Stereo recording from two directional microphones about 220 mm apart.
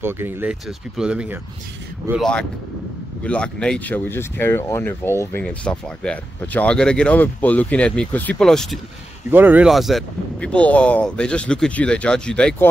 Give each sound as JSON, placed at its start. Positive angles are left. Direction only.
{"t": 0.0, "sound": "speech", "side_deg": -10}